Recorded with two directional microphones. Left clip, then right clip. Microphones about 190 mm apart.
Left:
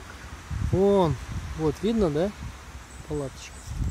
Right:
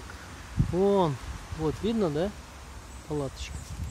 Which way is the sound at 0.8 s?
30° left (ahead or behind).